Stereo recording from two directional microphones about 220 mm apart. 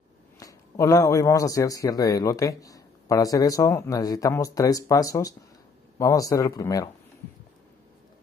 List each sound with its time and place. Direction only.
0.4 s a man's voice: 15° left (ahead or behind)